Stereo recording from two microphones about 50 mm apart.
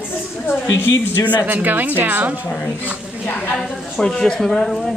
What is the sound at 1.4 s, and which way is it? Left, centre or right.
A woman's voice, right.